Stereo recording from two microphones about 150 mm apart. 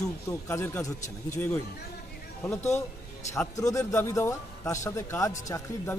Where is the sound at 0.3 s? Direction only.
15° left (ahead or behind).